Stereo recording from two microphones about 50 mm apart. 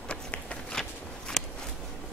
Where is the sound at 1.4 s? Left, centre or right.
Centre.